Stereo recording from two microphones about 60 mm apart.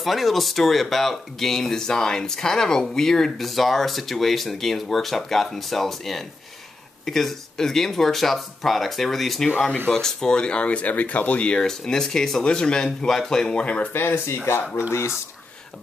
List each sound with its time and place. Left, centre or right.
0.0 s speech: centre; by 13.8 s left
13.9 s speech: left